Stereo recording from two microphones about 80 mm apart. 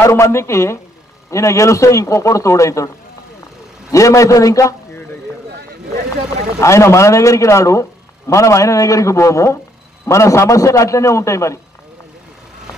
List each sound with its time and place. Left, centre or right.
0.0 s a man's voice: left
3.9 s a man's voice: left
6.6 s a man's voice: left